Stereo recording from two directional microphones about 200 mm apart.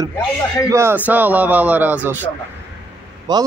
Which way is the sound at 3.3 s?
20° right (ahead or behind).